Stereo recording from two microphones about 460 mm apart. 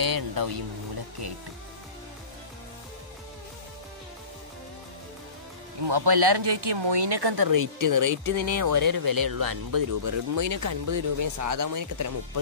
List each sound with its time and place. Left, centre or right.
0.0 s speech: right
5.9 s speech: right